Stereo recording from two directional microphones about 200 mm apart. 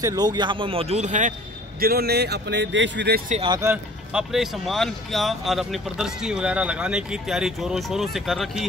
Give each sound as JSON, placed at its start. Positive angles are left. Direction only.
{"t": 0.0, "sound": "a man's voice", "side_deg": -20}
{"t": 1.8, "sound": "speech", "side_deg": -50}
{"t": 3.4, "sound": "a man's voice", "side_deg": -20}
{"t": 3.7, "sound": "speech", "side_deg": -5}